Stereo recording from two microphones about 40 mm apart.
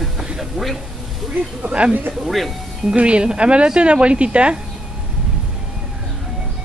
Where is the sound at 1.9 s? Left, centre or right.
Right.